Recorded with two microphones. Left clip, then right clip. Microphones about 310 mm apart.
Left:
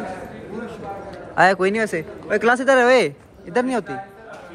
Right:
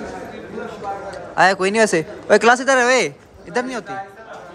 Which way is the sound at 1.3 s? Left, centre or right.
Centre.